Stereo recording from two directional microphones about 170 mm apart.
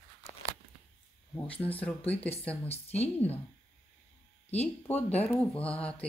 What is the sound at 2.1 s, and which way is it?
Speech, 35° left (ahead or behind).